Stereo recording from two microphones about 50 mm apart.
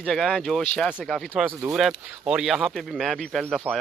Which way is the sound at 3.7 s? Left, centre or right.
Right.